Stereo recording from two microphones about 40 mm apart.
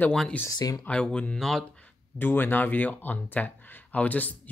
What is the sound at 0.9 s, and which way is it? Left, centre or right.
Speech, left.